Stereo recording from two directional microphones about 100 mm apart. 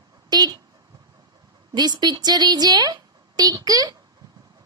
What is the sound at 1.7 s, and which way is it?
A woman's voice, 45° right (ahead or behind).